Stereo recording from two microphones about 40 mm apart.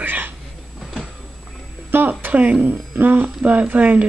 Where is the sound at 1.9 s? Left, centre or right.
Right.